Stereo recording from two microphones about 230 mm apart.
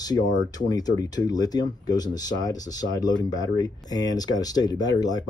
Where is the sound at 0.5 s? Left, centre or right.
Centre.